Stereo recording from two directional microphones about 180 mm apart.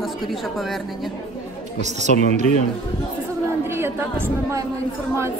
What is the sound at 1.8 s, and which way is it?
Speech, 40° right (ahead or behind).